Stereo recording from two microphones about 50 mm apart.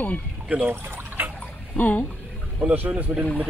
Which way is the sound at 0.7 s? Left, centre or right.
Right.